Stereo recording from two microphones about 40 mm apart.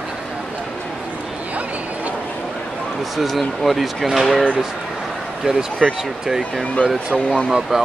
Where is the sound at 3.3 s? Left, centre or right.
Centre.